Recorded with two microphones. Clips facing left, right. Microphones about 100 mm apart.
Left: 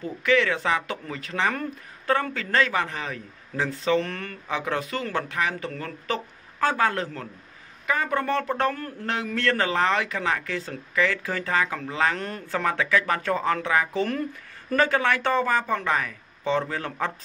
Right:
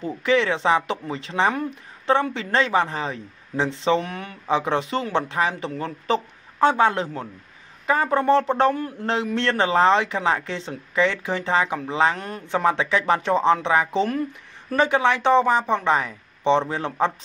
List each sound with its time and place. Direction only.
0.0 s speech: 30° right (ahead or behind)
4.0 s speech: 15° right (ahead or behind)
4.5 s speech: 30° right (ahead or behind)
12.2 s speech: 5° right (ahead or behind)
12.4 s speech: 20° right (ahead or behind)